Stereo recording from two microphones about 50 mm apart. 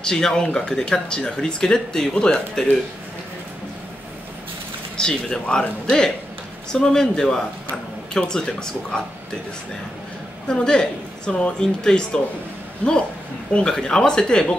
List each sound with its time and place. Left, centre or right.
0.0 s speech: centre
4.9 s speech: centre
10.5 s speech: centre
13.5 s speech: centre